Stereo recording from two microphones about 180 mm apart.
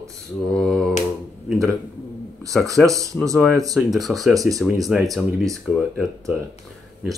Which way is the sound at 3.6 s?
20° right (ahead or behind).